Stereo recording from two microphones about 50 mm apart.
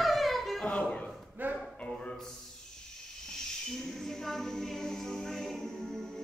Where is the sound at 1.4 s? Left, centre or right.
Right.